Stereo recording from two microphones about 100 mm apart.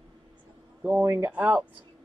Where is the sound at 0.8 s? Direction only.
15° right (ahead or behind).